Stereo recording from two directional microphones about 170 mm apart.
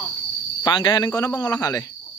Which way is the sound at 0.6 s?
25° left (ahead or behind).